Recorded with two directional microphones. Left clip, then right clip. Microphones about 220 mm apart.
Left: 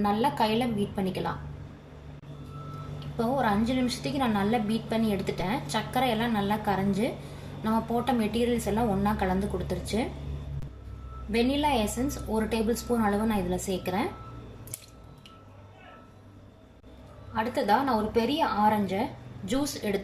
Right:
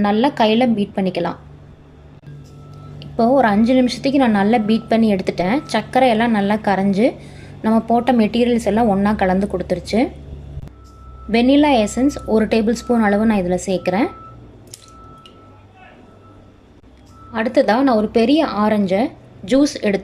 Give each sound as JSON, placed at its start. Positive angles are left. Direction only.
{"t": 0.0, "sound": "a woman's voice", "side_deg": -45}
{"t": 3.2, "sound": "a woman's voice", "side_deg": -40}
{"t": 11.3, "sound": "a woman's voice", "side_deg": -45}
{"t": 17.3, "sound": "a woman's voice", "side_deg": -45}